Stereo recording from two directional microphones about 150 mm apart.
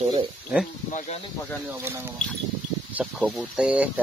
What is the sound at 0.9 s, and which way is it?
Speech, 50° left (ahead or behind).